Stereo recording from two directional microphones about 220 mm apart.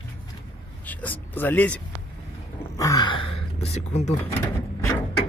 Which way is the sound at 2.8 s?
15° left (ahead or behind).